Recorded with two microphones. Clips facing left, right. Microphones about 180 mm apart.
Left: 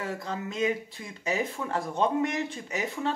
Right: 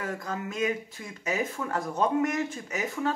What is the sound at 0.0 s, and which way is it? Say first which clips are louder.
Speech: even; 30° left (ahead or behind).